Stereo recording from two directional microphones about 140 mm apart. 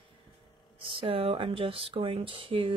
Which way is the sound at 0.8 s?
40° right (ahead or behind).